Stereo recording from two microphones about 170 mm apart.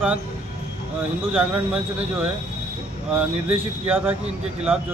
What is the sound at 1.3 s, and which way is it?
Speech, 5° right (ahead or behind).